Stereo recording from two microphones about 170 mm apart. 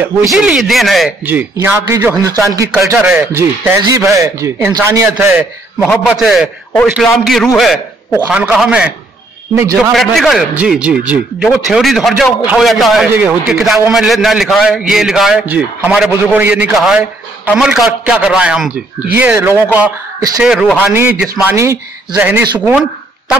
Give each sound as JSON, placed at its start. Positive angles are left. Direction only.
{"t": 0.3, "sound": "a man's voice", "side_deg": 0}
{"t": 1.2, "sound": "a man's voice", "side_deg": -10}